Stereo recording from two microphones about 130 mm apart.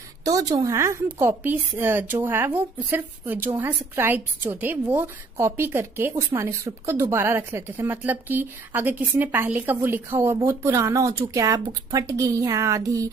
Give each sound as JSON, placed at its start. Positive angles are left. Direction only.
{"t": 0.2, "sound": "a woman's voice", "side_deg": -30}